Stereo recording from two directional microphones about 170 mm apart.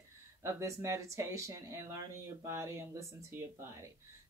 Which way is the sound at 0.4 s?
15° right (ahead or behind).